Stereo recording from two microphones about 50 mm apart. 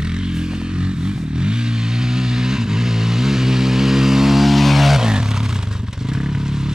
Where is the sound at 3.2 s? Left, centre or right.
Centre.